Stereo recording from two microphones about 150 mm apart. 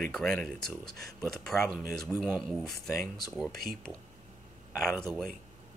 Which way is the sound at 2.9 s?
20° left (ahead or behind).